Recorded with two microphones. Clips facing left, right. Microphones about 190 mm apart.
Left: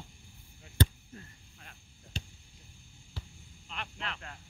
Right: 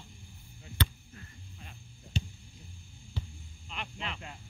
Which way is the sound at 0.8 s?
45° left (ahead or behind).